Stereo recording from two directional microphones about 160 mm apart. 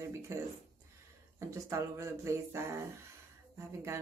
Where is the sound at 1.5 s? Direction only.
20° right (ahead or behind).